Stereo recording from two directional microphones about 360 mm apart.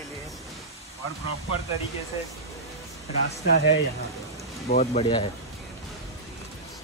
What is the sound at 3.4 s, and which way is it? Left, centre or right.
Speech, left.